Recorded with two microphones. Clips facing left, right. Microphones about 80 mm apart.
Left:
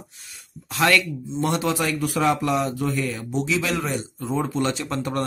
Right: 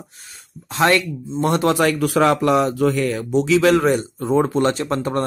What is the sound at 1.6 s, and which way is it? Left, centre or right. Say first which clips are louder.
A man's voice: right 6 dB; right.